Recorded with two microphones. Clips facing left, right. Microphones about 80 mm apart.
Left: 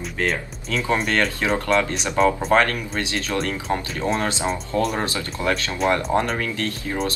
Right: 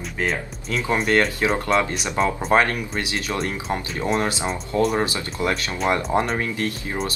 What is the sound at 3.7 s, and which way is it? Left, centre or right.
Speech, centre.